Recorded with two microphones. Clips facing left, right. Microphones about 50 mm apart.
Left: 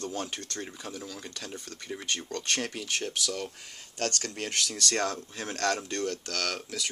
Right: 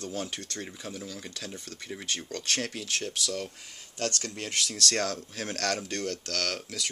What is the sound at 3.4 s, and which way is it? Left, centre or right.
Speech, left.